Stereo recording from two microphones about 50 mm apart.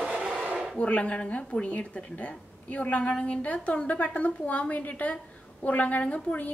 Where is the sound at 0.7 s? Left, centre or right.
Left.